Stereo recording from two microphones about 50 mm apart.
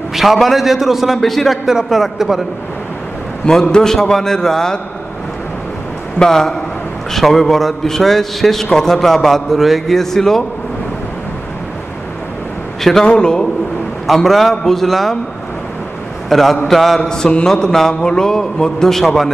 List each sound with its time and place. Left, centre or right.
0.1 s a man's voice: centre
1.7 s a man's voice: centre
3.7 s a man's voice: centre
6.1 s a man's voice: centre
13.0 s a man's voice: centre
14.0 s a man's voice: centre
16.3 s a man's voice: centre
17.1 s a man's voice: centre